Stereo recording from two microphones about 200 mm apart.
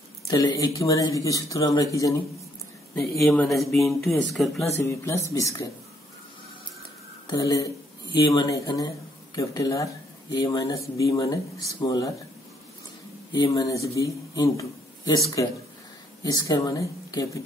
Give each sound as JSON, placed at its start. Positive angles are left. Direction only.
{"t": 0.3, "sound": "speech", "side_deg": 20}
{"t": 2.9, "sound": "speech", "side_deg": 0}
{"t": 4.8, "sound": "speech", "side_deg": 15}
{"t": 7.2, "sound": "speech", "side_deg": 15}
{"t": 13.3, "sound": "a man's voice", "side_deg": 20}